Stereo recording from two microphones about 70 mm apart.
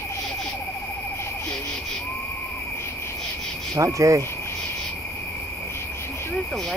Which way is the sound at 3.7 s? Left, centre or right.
Right.